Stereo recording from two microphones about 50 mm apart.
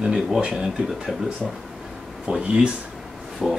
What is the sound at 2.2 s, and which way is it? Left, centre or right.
Speech, right.